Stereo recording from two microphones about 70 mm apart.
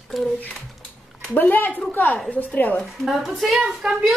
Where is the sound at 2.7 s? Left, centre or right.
Centre.